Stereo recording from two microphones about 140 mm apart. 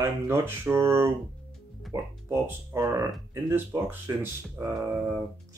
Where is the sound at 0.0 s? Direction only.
20° right (ahead or behind).